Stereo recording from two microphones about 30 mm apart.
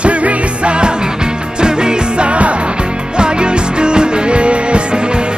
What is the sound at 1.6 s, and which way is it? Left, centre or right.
Music, right.